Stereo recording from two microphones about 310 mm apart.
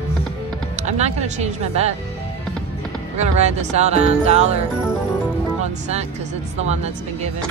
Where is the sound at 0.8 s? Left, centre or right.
Right.